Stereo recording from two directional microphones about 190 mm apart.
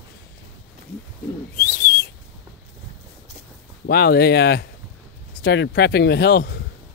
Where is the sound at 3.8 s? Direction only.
55° left (ahead or behind).